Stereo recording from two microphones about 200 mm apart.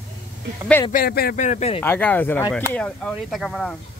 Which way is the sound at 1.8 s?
10° left (ahead or behind).